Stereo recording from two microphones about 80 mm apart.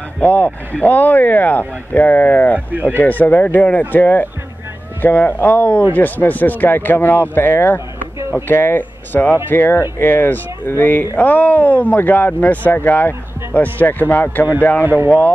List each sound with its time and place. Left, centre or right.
0.2 s speech: centre
14.8 s speech: right
15.0 s speech: centre